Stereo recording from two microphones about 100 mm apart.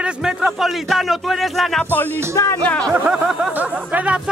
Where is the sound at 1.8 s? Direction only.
20° left (ahead or behind).